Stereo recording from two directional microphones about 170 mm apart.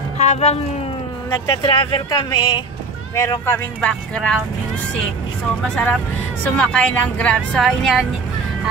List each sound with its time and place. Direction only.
0.2 s speech: 40° left (ahead or behind)
1.3 s speech: 25° left (ahead or behind)
3.2 s speech: 15° left (ahead or behind)
5.6 s speech: 10° left (ahead or behind)